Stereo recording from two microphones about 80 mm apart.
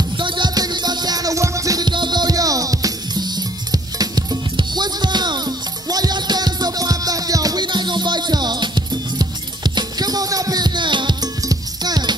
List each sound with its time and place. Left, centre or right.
0.2 s music: right
0.6 s music: right
1.9 s music: right
7.6 s music: right
11.4 s music: right